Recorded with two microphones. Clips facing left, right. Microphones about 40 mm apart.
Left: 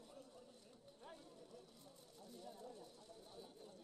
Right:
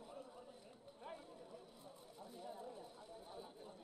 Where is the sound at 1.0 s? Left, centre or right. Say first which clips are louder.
Right 5 dB; centre.